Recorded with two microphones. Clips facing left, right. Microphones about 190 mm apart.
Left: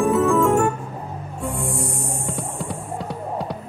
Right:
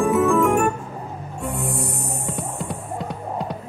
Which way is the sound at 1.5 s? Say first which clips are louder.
Even; 10° left (ahead or behind).